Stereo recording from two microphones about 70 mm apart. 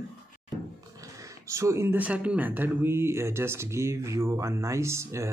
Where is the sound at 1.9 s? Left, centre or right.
Right.